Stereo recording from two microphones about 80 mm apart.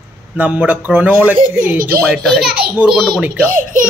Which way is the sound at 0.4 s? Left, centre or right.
Centre.